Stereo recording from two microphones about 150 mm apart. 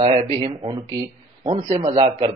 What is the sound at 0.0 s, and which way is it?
A man's voice, 40° right (ahead or behind).